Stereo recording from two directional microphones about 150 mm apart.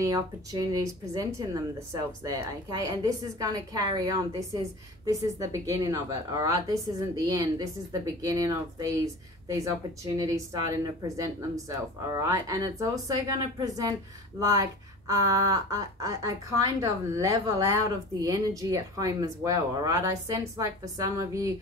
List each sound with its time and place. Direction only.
0.0 s speech: 25° right (ahead or behind)